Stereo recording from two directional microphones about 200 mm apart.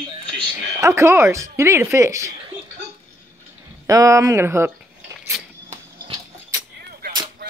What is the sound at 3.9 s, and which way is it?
Speech, 15° right (ahead or behind).